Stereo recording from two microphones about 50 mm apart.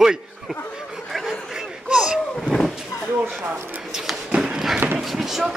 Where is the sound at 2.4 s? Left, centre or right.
Centre.